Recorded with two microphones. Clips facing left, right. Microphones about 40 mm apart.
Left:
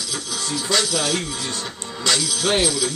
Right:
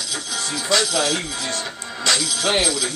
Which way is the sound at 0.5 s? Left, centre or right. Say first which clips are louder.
Right 1 dB; centre.